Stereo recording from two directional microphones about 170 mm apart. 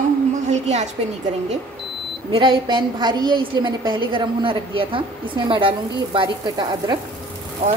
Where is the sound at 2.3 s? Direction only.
30° right (ahead or behind).